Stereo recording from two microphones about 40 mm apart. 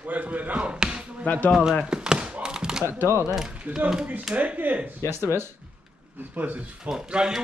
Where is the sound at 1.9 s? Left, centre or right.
Right.